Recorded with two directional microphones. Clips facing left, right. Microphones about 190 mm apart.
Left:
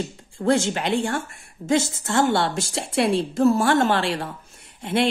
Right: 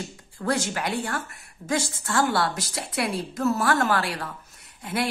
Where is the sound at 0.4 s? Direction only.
25° left (ahead or behind).